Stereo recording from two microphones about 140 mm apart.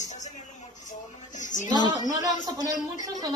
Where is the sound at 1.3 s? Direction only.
60° left (ahead or behind).